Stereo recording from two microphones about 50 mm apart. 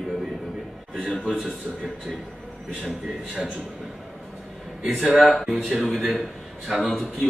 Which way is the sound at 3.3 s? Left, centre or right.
Centre.